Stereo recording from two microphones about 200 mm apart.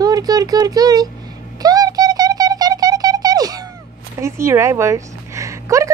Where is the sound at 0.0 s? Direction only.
20° right (ahead or behind).